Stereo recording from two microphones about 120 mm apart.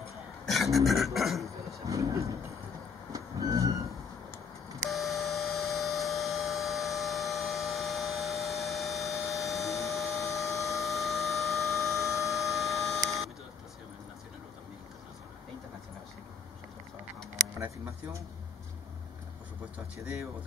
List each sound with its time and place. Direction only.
0.5 s speech: centre (ahead or behind)
1.9 s speech: 25° right (ahead or behind)
3.1 s vehicle: 30° right (ahead or behind)
4.8 s a sound: centre (ahead or behind)